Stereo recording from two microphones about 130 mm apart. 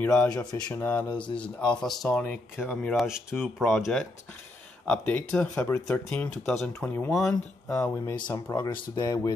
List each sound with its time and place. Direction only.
0.0 s speech: 10° left (ahead or behind)
6.4 s speech: 5° left (ahead or behind)
8.0 s speech: 25° left (ahead or behind)